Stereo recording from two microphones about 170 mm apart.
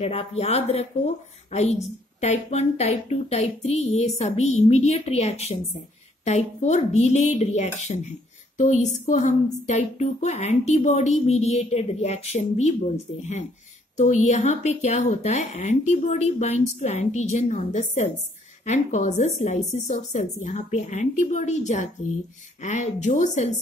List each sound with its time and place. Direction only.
0.0 s a woman's voice: 35° left (ahead or behind)